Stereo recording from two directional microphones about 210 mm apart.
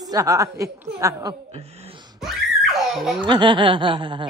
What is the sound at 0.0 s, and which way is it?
A woman's voice, 15° right (ahead or behind).